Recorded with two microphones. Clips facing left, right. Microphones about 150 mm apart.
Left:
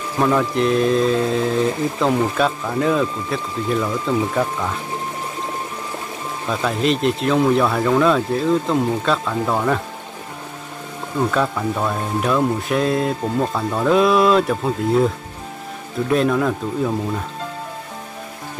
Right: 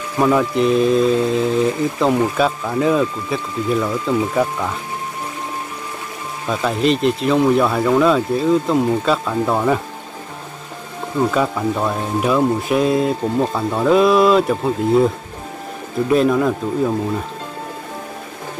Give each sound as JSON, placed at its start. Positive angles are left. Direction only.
{"t": 0.2, "sound": "speech", "side_deg": -5}
{"t": 6.5, "sound": "speech", "side_deg": 0}
{"t": 11.1, "sound": "speech", "side_deg": -5}
{"t": 16.1, "sound": "speech", "side_deg": 0}